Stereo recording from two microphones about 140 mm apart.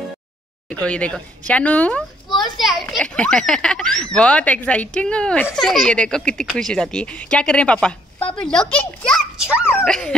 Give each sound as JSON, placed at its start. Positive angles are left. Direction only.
{"t": 0.7, "sound": "a child's voice", "side_deg": 10}
{"t": 9.6, "sound": "dog", "side_deg": 15}
{"t": 9.8, "sound": "a child's voice", "side_deg": 5}